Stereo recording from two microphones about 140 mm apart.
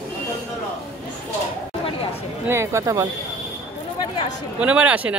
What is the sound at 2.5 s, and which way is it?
Speech, 20° right (ahead or behind).